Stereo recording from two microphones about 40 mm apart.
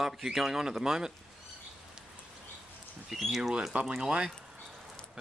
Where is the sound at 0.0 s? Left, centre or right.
Centre.